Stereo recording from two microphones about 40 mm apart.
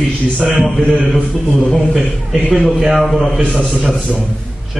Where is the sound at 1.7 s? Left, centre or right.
Centre.